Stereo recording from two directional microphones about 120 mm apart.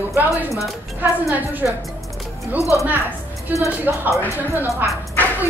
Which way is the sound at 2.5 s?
25° left (ahead or behind).